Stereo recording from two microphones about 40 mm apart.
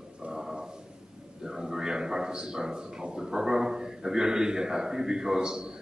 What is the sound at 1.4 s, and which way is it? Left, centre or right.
Speech, centre.